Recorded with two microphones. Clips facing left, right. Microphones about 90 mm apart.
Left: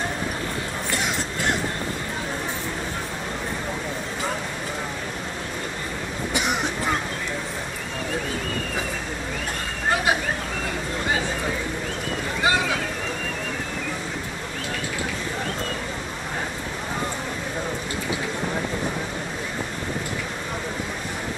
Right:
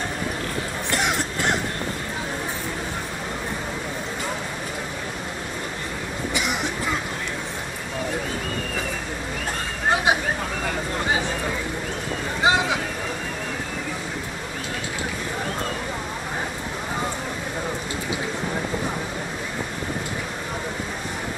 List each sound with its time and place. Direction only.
12.4 s boat: 20° right (ahead or behind)